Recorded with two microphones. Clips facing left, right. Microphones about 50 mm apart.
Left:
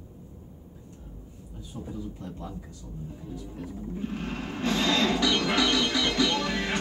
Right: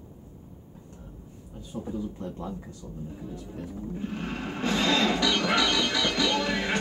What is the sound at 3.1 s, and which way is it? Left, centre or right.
Vehicle, centre.